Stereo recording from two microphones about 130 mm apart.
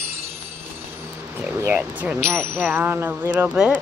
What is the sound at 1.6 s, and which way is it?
Vehicle, 15° right (ahead or behind).